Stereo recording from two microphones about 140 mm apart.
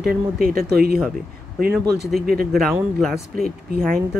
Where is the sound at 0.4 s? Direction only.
90° right.